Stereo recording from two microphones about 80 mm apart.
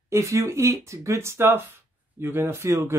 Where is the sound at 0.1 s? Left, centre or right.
Right.